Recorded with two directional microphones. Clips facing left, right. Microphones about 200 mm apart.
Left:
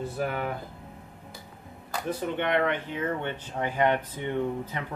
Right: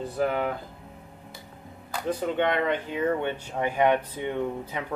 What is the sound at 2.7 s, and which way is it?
Speech, 15° right (ahead or behind).